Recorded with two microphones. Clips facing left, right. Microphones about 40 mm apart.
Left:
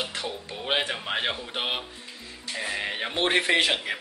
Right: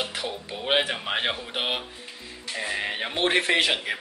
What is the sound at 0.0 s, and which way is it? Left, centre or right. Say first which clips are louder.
Speech: right 1 dB; centre.